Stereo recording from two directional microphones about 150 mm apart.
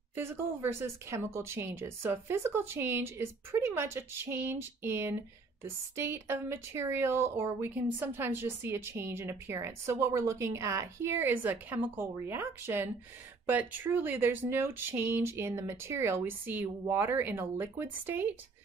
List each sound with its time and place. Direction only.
0.1 s speech: 15° right (ahead or behind)